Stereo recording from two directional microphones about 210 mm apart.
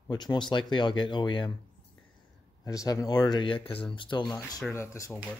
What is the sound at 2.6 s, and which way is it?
Speech, 15° left (ahead or behind).